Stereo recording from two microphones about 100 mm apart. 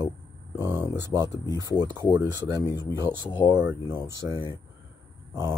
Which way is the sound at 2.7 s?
35° left (ahead or behind).